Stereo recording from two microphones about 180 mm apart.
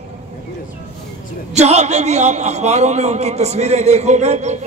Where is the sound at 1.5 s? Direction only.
40° right (ahead or behind).